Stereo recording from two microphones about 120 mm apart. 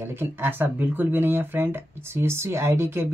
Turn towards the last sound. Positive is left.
turn(degrees=-20)  # may be behind; listen again after turning